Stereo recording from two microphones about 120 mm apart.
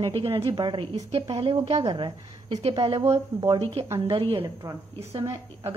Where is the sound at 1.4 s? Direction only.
50° right (ahead or behind).